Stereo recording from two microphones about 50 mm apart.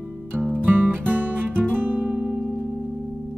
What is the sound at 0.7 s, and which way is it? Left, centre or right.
Music, right.